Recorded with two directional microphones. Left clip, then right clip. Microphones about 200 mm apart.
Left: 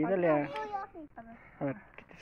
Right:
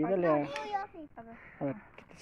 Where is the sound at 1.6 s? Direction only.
10° right (ahead or behind).